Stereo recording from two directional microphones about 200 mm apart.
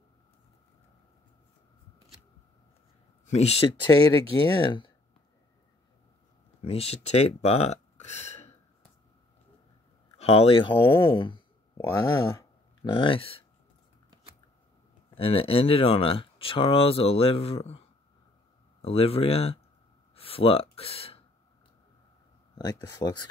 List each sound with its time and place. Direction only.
3.3 s speech: 30° left (ahead or behind)
6.6 s speech: 30° left (ahead or behind)
10.1 s speech: 30° left (ahead or behind)
15.1 s speech: 30° left (ahead or behind)
22.6 s speech: 20° left (ahead or behind)